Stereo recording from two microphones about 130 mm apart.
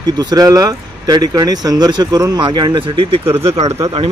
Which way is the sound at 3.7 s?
25° right (ahead or behind).